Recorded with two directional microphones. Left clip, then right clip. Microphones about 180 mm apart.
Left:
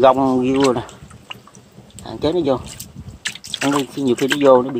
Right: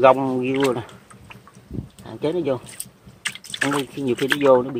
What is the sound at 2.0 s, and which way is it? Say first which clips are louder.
Speech: left 5 dB; 15° left (ahead or behind).